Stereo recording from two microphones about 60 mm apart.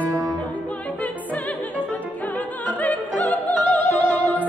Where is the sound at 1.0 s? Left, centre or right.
Left.